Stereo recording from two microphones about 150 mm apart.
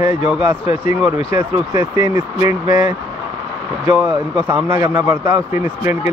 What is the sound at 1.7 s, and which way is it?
Speech, 20° right (ahead or behind).